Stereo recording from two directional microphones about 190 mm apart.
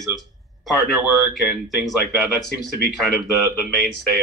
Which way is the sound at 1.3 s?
Centre (ahead or behind).